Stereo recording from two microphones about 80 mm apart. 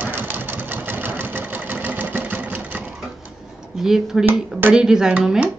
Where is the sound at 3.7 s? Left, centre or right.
Centre.